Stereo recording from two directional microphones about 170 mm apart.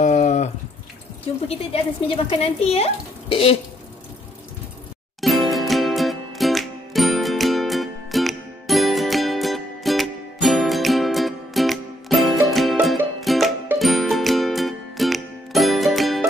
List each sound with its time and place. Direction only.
0.0 s a sound: 45° left (ahead or behind)
1.5 s a woman's voice: 35° left (ahead or behind)
5.2 s music: centre (ahead or behind)